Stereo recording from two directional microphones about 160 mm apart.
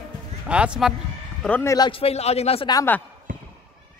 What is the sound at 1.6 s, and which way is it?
Speech, 20° left (ahead or behind).